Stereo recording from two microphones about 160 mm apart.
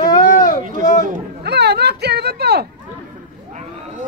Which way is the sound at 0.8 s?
50° left (ahead or behind).